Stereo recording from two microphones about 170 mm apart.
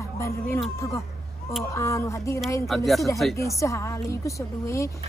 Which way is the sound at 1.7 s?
15° left (ahead or behind).